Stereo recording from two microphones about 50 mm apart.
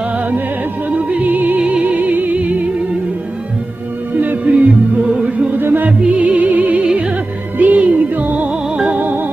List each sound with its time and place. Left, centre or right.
0.8 s music: right
4.2 s music: right
5.9 s music: right
8.7 s music: right